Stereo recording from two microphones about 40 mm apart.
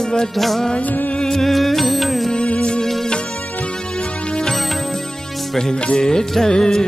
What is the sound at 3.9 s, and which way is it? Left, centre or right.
Music, left.